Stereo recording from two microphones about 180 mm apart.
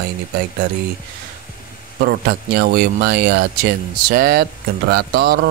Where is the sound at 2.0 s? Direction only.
60° right (ahead or behind).